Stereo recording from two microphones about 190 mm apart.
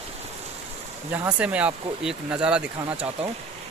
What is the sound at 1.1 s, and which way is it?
Speech, 10° right (ahead or behind).